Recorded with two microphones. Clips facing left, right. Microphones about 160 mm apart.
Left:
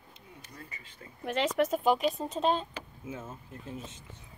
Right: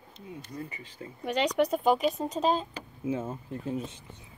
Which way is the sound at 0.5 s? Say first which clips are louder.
Right 9 dB; 25° right (ahead or behind).